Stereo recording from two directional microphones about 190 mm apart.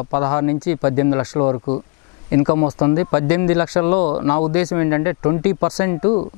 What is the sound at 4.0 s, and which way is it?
Speech, 40° left (ahead or behind).